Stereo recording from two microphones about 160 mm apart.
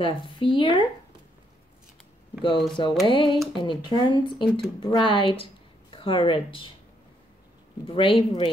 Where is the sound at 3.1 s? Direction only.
30° left (ahead or behind).